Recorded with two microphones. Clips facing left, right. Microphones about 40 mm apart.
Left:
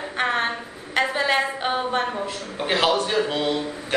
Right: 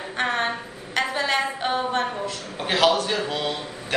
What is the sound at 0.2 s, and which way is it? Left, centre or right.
A woman's voice, centre.